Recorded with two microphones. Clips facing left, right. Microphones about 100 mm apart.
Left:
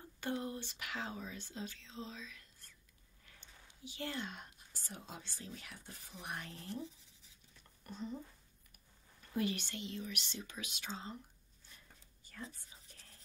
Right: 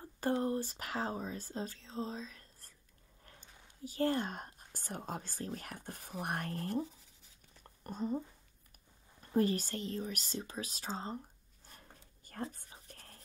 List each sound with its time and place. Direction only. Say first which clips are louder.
0.2 s speech: right 7 dB; 40° right (ahead or behind)
7.6 s a sound: right 7 dB; 45° right (ahead or behind)
9.2 s speech: right 6 dB; 40° right (ahead or behind)
11.6 s whispering: right 5 dB; 50° right (ahead or behind)